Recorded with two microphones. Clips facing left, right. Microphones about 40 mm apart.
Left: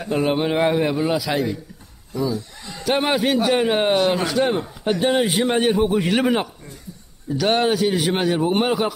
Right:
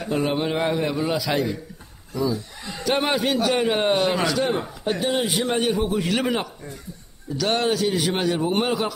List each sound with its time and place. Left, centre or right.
0.0 s a man's voice: centre
4.9 s a man's voice: left
5.2 s a man's voice: centre